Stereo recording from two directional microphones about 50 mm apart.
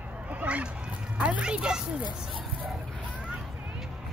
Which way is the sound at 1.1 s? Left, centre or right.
Right.